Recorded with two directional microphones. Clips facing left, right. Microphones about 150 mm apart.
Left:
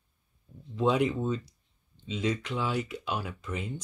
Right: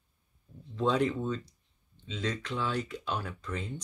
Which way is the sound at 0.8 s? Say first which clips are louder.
Left 2 dB; 15° left (ahead or behind).